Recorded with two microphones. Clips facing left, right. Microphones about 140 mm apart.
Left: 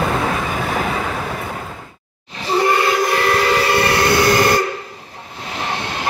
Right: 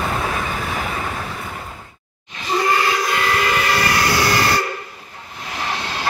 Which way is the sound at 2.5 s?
25° left (ahead or behind).